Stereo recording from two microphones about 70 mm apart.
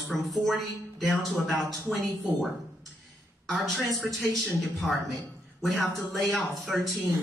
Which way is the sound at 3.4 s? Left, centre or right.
Centre.